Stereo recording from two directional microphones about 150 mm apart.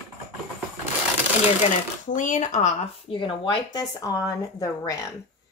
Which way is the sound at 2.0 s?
55° left (ahead or behind).